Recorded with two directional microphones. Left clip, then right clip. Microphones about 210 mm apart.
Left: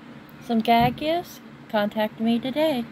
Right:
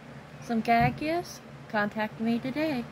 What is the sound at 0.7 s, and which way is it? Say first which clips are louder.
Speech: left 5 dB; 10° left (ahead or behind).